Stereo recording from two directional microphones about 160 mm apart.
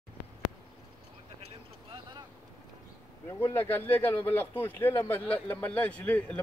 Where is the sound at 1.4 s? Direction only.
30° right (ahead or behind).